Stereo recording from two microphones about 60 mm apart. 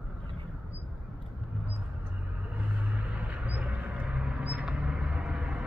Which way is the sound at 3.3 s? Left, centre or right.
Right.